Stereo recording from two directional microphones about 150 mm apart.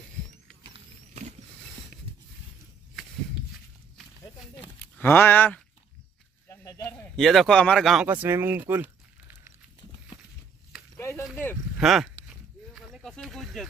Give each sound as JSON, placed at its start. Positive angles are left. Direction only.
{"t": 4.6, "sound": "a sound", "side_deg": 10}
{"t": 7.2, "sound": "speech", "side_deg": 0}
{"t": 8.1, "sound": "speech", "side_deg": -15}
{"t": 11.0, "sound": "snake", "side_deg": 20}
{"t": 11.8, "sound": "speech", "side_deg": -5}
{"t": 12.7, "sound": "snake", "side_deg": 0}